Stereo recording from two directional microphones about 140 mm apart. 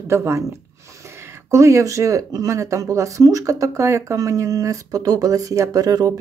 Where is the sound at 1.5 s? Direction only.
20° right (ahead or behind).